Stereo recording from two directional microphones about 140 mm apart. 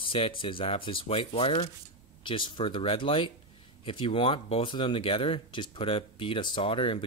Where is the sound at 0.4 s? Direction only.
40° left (ahead or behind).